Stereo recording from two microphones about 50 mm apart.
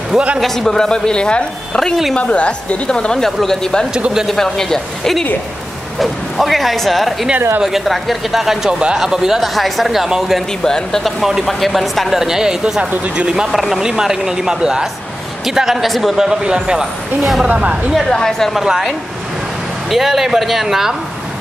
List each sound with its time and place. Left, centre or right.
0.4 s a woman's voice: centre; by 2.8 s left
2.9 s a woman's voice: centre
10.6 s a woman's voice: centre
13.5 s speech: centre
16.2 s speech: centre
18.1 s a woman's voice: centre
18.5 s speech: centre